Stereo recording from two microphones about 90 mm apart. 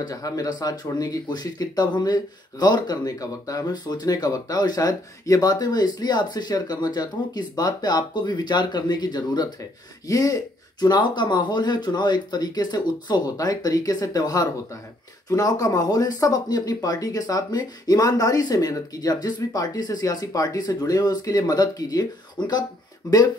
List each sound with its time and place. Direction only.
0.0 s speech: 45° left (ahead or behind)
10.0 s speech: 40° left (ahead or behind)
22.4 s speech: 55° left (ahead or behind)
23.0 s speech: 45° left (ahead or behind)